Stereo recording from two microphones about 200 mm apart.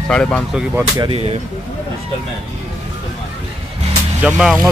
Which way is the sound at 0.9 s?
25° right (ahead or behind).